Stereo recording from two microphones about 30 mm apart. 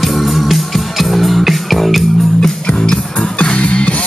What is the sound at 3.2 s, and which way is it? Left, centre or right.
Music, left.